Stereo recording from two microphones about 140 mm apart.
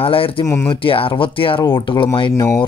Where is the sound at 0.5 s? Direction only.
20° left (ahead or behind).